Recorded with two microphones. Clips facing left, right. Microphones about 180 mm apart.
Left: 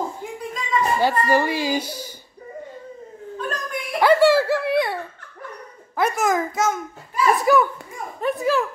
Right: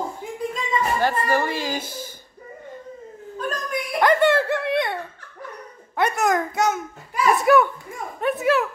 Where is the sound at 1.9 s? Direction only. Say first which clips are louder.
Left 1 dB; 15° left (ahead or behind).